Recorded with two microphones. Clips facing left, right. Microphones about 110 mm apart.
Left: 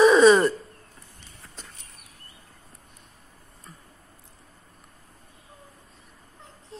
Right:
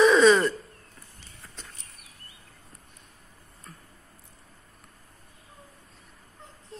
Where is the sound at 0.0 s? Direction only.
10° left (ahead or behind).